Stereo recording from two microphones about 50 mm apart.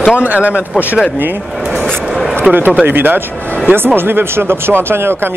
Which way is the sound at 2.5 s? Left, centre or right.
Centre.